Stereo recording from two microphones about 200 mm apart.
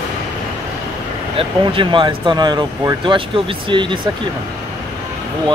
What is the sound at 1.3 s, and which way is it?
Speech, 25° right (ahead or behind).